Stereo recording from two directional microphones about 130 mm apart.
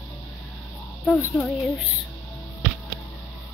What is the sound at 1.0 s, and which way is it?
Speech, 10° left (ahead or behind).